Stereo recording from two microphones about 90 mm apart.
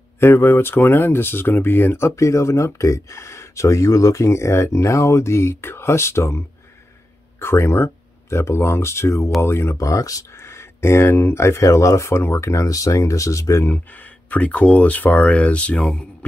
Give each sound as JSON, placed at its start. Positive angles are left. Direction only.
{"t": 0.2, "sound": "speech", "side_deg": 25}
{"t": 13.7, "sound": "speech", "side_deg": 20}